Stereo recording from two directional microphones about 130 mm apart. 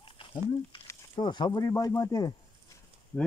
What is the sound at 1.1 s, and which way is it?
Speech, 35° left (ahead or behind).